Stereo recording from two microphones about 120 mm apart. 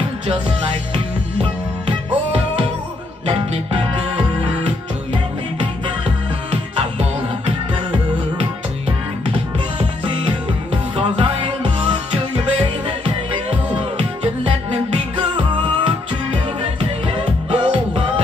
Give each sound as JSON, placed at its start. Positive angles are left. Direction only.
{"t": 0.9, "sound": "music", "side_deg": -50}
{"t": 3.3, "sound": "music", "side_deg": -50}
{"t": 9.8, "sound": "music", "side_deg": -50}